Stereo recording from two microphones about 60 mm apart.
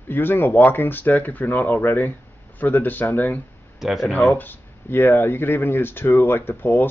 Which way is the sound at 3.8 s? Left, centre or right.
Centre.